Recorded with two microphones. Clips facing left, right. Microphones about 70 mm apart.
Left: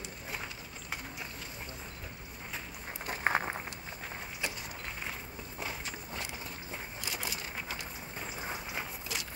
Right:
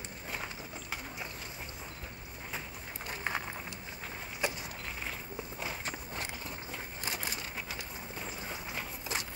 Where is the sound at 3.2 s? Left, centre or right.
Left.